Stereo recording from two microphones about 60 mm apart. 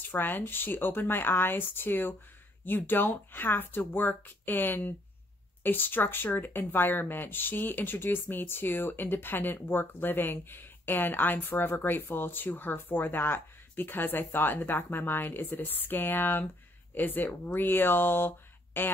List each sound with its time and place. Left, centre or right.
0.1 s speech: left